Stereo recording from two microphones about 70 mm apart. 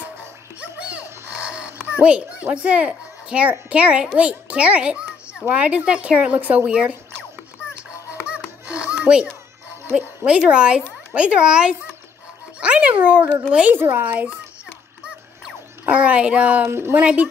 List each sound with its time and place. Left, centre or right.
0.6 s a sound: centre
5.5 s speech: centre
8.6 s a sound: centre
10.2 s speech: centre
12.5 s dog: centre
13.4 s speech: centre
13.7 s a child's voice: right
15.9 s speech: centre
16.7 s speech: right
17.0 s a child's voice: centre